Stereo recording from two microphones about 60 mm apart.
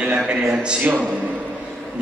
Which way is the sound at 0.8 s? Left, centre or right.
Right.